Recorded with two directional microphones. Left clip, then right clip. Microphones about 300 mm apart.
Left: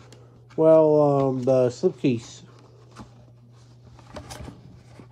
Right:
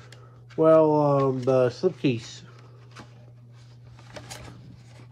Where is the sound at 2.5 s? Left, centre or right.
Centre.